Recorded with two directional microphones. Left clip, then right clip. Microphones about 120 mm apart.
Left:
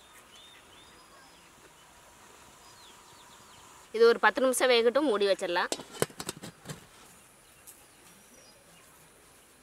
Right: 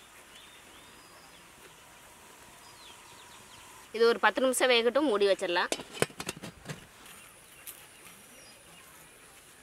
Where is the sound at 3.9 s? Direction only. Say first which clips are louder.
Left 2 dB; 25° left (ahead or behind).